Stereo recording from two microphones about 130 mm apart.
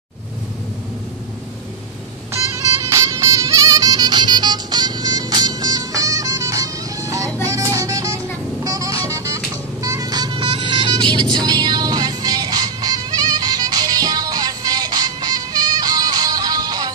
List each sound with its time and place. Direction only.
2.3 s music: 20° right (ahead or behind)